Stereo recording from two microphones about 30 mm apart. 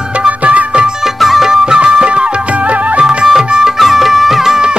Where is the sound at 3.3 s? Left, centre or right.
Centre.